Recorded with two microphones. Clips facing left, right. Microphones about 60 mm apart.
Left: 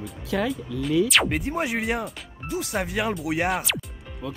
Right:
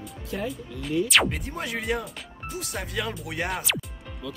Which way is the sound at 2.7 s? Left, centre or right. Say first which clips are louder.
Left 7 dB; left.